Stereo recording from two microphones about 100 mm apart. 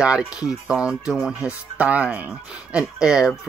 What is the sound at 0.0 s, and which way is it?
Speech, 10° right (ahead or behind).